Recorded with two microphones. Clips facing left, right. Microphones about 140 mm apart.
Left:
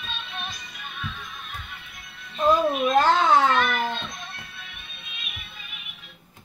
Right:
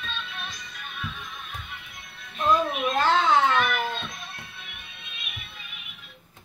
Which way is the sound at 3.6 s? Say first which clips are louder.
Left 2 dB; 5° right (ahead or behind).